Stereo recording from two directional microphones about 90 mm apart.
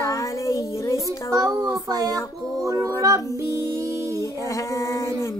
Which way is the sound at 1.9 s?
40° right (ahead or behind).